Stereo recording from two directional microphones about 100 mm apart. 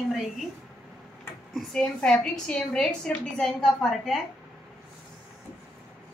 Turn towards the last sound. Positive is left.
turn(degrees=5)  # may be behind; listen again after turning